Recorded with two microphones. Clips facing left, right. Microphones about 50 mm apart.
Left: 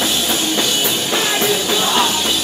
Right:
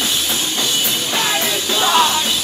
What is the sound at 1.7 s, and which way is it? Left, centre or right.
Music, centre.